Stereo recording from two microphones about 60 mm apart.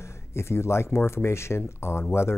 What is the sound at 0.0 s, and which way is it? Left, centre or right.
Speech, left.